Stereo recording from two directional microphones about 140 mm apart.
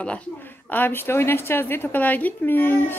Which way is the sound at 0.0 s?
10° left (ahead or behind).